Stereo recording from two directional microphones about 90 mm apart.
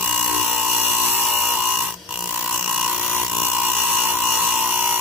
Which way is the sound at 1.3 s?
15° right (ahead or behind).